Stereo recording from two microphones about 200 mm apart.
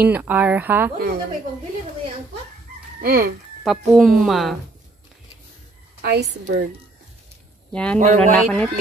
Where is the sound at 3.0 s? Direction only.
45° right (ahead or behind).